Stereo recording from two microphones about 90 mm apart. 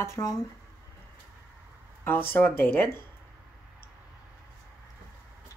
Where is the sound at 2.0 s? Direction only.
20° left (ahead or behind).